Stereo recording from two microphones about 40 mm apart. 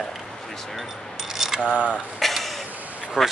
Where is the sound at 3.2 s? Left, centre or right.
Centre.